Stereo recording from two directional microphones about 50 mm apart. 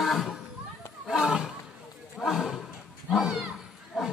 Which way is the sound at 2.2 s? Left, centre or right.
Centre.